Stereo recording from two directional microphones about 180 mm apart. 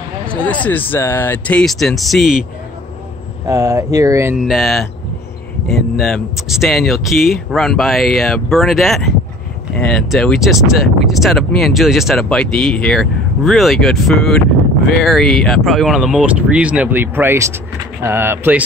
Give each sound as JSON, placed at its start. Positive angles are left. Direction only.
{"t": 0.3, "sound": "speech", "side_deg": 5}
{"t": 3.4, "sound": "speech", "side_deg": -20}
{"t": 4.4, "sound": "speech", "side_deg": 0}